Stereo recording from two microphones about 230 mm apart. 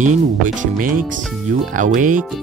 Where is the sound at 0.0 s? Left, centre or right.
Right.